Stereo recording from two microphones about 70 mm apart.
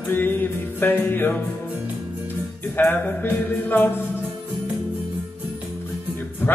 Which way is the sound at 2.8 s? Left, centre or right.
Left.